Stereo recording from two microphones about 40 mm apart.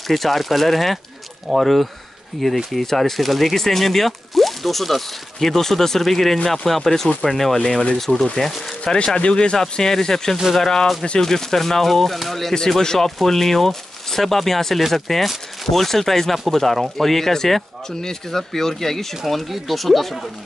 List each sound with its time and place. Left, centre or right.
0.1 s speech: centre
8.8 s speech: left
10.3 s speech: centre
10.6 s speech: centre
12.5 s speech: centre